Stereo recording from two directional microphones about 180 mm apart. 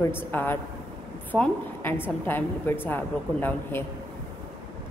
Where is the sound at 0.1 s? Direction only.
10° left (ahead or behind).